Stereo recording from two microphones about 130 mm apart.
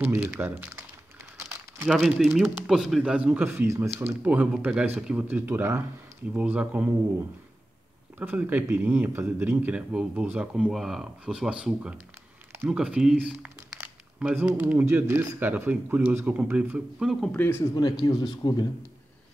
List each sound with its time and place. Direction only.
0.0 s speech: 15° right (ahead or behind)
1.9 s speech: 5° right (ahead or behind)
8.2 s speech: 10° right (ahead or behind)
17.3 s speech: 15° left (ahead or behind)
18.2 s speech: 30° left (ahead or behind)